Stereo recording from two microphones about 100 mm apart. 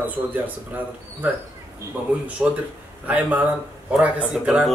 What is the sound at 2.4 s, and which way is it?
A man's voice, 10° right (ahead or behind).